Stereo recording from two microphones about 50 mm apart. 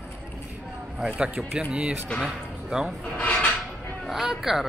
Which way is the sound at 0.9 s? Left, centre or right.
Right.